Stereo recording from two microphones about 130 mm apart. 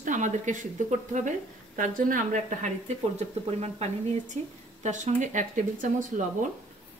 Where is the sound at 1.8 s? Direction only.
90° right.